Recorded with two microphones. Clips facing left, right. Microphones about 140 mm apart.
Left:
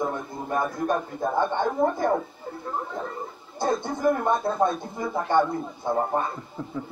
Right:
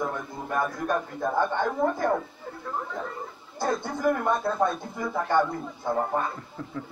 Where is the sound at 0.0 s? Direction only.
20° left (ahead or behind).